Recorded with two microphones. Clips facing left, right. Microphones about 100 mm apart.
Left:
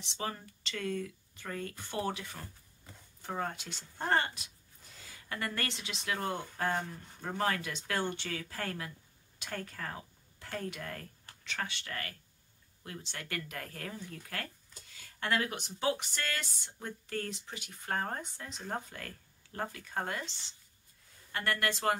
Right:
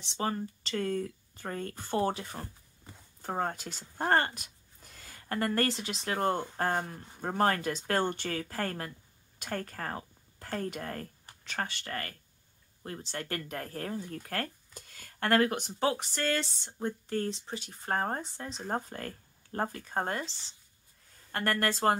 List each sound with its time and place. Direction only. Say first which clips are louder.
0.0 s a woman's voice: right 6 dB; 35° right (ahead or behind)